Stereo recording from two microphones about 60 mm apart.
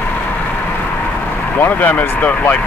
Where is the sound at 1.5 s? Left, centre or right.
Left.